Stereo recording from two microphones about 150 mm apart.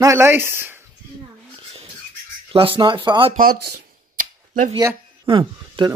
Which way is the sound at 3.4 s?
85° right.